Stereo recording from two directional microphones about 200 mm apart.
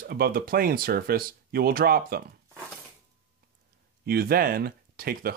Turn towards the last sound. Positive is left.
turn(degrees=-45)  # may be behind; listen again after turning